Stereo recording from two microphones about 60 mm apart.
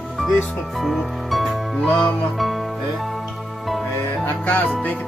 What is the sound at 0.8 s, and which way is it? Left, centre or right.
Music, centre.